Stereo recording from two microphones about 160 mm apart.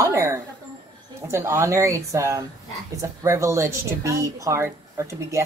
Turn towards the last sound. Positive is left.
turn(degrees=-15)  # may be behind; listen again after turning